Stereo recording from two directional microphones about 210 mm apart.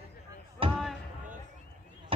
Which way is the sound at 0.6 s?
25° right (ahead or behind).